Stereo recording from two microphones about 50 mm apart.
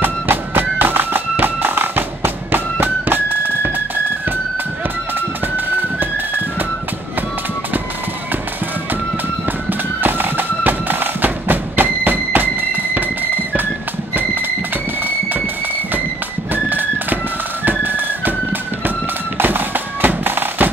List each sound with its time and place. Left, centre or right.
0.0 s music: right
5.8 s music: right
9.7 s music: right
16.5 s music: right
19.3 s music: right